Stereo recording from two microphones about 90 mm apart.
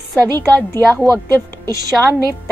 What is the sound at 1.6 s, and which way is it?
Speech, 45° right (ahead or behind).